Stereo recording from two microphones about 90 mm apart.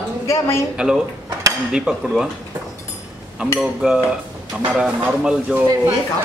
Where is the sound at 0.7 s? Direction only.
10° right (ahead or behind).